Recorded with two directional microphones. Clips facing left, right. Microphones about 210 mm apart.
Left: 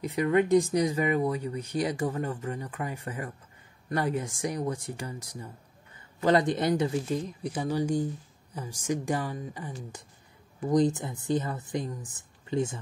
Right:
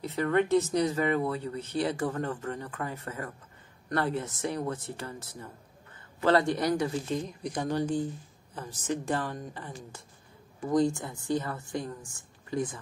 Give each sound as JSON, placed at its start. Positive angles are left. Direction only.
{"t": 0.0, "sound": "a man's voice", "side_deg": 15}
{"t": 7.1, "sound": "a woman's voice", "side_deg": 5}